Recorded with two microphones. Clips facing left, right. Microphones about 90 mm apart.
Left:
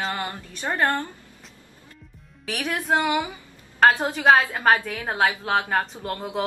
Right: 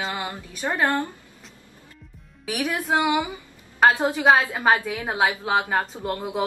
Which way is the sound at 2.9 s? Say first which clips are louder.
Even; 15° right (ahead or behind).